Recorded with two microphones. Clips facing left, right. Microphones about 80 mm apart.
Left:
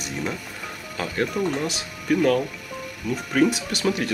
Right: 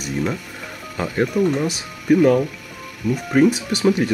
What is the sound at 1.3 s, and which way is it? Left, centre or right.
Speech, centre.